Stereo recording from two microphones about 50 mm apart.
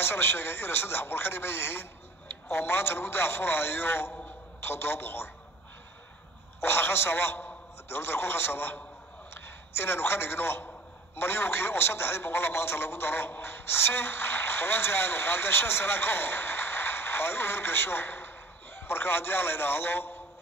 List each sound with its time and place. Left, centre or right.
0.0 s a man's voice: left
6.6 s a man's voice: left